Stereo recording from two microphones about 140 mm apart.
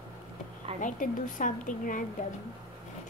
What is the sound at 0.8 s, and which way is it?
A woman's voice, 70° left (ahead or behind).